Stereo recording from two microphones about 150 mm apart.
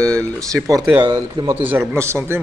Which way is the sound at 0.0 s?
5° left (ahead or behind).